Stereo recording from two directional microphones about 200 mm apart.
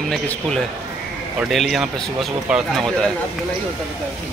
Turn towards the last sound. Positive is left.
turn(degrees=0)  # may be behind; listen again after turning